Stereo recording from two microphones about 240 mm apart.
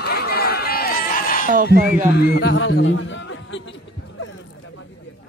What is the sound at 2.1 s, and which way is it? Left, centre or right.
A man's voice, left.